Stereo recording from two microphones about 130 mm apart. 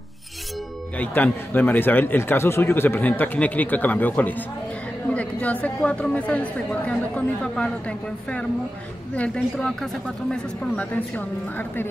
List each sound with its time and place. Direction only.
0.9 s speech: 10° left (ahead or behind)
9.1 s speech: 10° left (ahead or behind)